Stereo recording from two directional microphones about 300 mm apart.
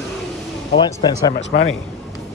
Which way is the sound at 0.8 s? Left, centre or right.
Centre.